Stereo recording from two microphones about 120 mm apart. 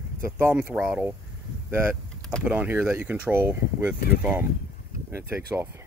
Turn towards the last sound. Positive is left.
turn(degrees=-20)  # may be behind; listen again after turning